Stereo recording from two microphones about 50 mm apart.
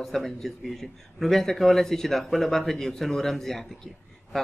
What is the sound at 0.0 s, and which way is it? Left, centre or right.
A man's voice, centre.